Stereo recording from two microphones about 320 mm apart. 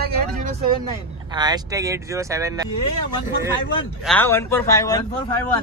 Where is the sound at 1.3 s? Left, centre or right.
Centre.